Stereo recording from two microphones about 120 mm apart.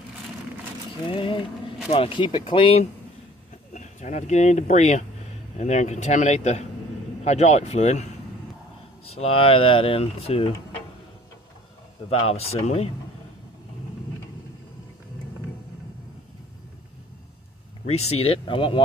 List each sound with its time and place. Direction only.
1.0 s speech: 45° left (ahead or behind)
3.7 s speech: 75° left (ahead or behind)
9.0 s speech: 55° left (ahead or behind)
12.1 s speech: 60° left (ahead or behind)
17.8 s speech: 60° left (ahead or behind)